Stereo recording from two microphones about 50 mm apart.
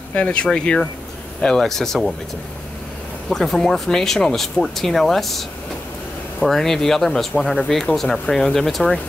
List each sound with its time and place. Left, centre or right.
0.1 s speech: left
1.6 s speech: centre
3.3 s speech: centre